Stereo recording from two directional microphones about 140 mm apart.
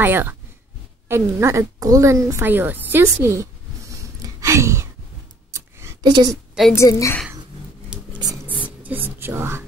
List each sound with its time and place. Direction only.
0.0 s a woman's voice: 15° right (ahead or behind)
4.2 s a sound: 20° right (ahead or behind)
6.7 s a woman's voice: 20° left (ahead or behind)
8.6 s whispering: 10° right (ahead or behind)